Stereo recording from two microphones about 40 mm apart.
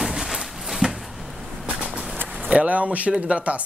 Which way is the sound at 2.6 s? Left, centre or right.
Right.